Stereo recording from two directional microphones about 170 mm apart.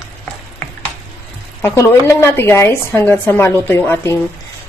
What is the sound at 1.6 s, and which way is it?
A woman's voice, 15° left (ahead or behind).